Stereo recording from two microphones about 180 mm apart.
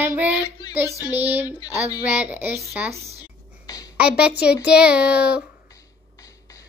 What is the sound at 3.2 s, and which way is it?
Whispering, 20° left (ahead or behind).